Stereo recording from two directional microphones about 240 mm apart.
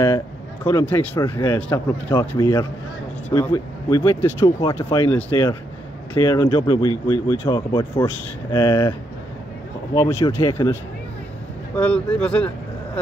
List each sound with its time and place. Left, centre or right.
0.7 s speech: centre
9.9 s speech: centre